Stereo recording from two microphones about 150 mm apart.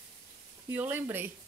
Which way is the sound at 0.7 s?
10° right (ahead or behind).